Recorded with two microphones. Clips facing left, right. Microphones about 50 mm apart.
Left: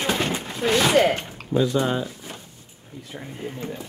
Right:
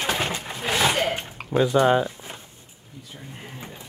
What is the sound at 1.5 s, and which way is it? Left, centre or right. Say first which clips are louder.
Speech: right 3 dB; right.